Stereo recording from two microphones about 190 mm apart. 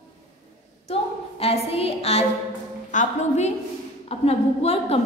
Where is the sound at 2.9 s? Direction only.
40° left (ahead or behind).